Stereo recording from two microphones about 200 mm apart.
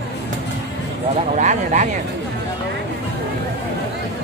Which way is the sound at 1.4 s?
35° right (ahead or behind).